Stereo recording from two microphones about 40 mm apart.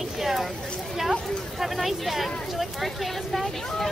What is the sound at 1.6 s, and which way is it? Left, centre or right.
Speech, centre.